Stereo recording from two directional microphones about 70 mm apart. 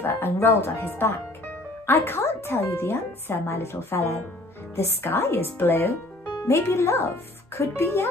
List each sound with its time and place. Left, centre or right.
0.0 s speech: left
6.4 s speech: left